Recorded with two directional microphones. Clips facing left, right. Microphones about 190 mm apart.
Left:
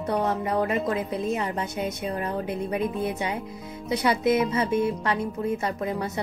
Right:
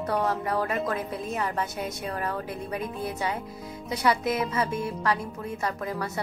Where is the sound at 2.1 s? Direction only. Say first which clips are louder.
Left 3 dB; 20° left (ahead or behind).